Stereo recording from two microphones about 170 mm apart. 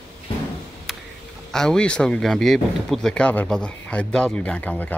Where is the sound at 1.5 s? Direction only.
5° left (ahead or behind).